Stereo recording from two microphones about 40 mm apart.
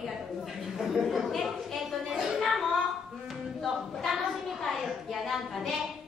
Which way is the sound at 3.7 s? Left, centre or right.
Centre.